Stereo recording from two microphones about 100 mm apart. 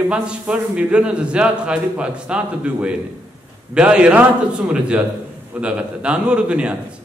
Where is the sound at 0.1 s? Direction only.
10° right (ahead or behind).